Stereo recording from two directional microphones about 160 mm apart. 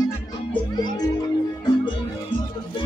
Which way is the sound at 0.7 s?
25° left (ahead or behind).